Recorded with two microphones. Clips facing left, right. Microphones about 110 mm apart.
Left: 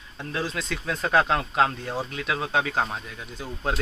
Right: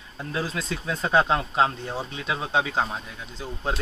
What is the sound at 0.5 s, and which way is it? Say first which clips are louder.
Speech: right 1 dB; 30° right (ahead or behind).